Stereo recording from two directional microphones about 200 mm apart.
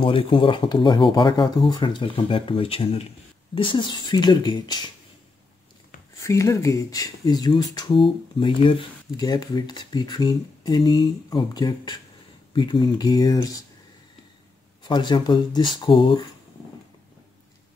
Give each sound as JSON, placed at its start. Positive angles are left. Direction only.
{"t": 0.0, "sound": "speech", "side_deg": 25}
{"t": 6.2, "sound": "speech", "side_deg": 15}
{"t": 14.8, "sound": "speech", "side_deg": 20}